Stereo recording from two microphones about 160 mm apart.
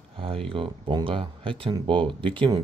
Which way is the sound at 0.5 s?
35° right (ahead or behind).